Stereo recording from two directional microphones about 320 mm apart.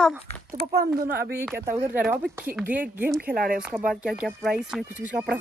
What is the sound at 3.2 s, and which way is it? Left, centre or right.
Speech, right.